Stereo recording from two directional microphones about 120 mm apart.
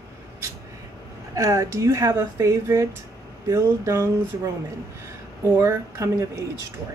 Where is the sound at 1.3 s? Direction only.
25° right (ahead or behind).